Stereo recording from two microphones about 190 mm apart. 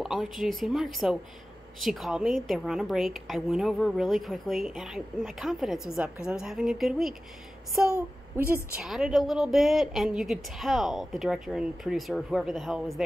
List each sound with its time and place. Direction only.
0.0 s a woman's voice: centre (ahead or behind)
8.5 s a woman's voice: 15° left (ahead or behind)
8.8 s a woman's voice: centre (ahead or behind)